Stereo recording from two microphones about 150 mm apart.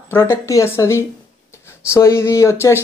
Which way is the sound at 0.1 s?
15° left (ahead or behind).